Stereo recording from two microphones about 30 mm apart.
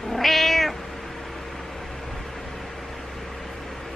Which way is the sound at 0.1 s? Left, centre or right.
Centre.